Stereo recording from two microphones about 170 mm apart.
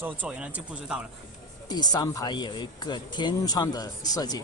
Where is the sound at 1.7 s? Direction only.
25° left (ahead or behind).